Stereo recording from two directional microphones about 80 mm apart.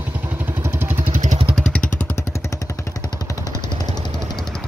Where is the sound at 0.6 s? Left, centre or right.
Right.